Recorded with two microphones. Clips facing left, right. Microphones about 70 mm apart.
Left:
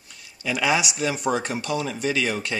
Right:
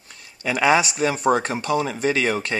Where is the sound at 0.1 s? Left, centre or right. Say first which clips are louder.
Right 3 dB; right.